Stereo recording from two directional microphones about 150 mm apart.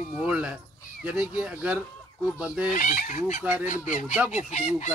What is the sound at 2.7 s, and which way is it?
Fowl, 60° left (ahead or behind).